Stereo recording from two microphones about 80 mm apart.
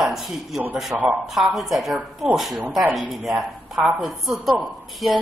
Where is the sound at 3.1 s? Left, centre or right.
Centre.